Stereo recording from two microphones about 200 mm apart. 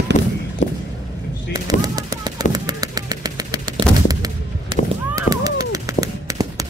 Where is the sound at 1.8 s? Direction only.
20° right (ahead or behind).